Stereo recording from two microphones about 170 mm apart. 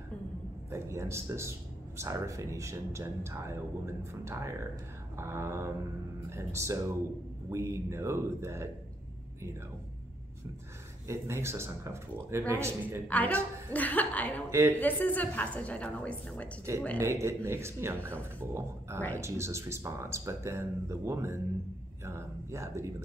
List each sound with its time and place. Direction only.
0.7 s speech: 15° right (ahead or behind)
11.1 s speech: 15° right (ahead or behind)
13.1 s a woman's voice: 10° left (ahead or behind)
14.5 s speech: 15° right (ahead or behind)
14.8 s a woman's voice: 10° left (ahead or behind)
16.7 s speech: 15° right (ahead or behind)